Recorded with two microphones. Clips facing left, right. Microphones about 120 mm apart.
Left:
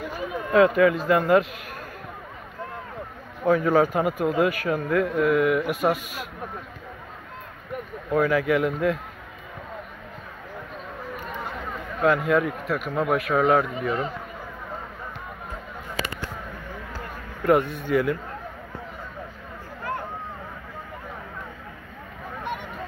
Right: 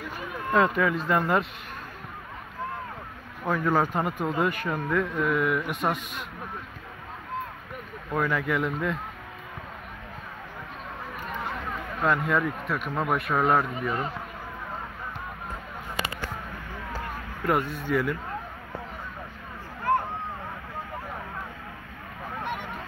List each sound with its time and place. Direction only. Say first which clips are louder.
0.5 s speech: left 5 dB; centre (ahead or behind)
3.4 s speech: left 5 dB; 10° left (ahead or behind)
8.1 s speech: left 6 dB; 5° left (ahead or behind)
12.0 s speech: left 4 dB; centre (ahead or behind)
17.5 s speech: left 5 dB; 20° left (ahead or behind)